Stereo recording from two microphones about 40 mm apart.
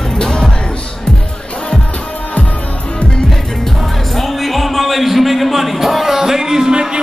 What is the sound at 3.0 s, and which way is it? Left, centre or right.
Music, left.